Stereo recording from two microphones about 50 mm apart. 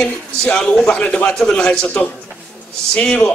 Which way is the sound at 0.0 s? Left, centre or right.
Centre.